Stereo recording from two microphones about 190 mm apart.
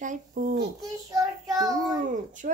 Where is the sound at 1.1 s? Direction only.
20° right (ahead or behind).